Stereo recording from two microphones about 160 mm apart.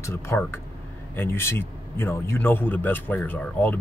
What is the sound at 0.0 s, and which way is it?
A man's voice, 15° left (ahead or behind).